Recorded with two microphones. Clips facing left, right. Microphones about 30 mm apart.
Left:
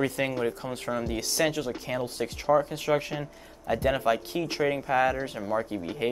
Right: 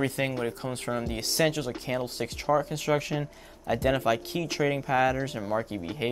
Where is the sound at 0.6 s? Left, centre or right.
Right.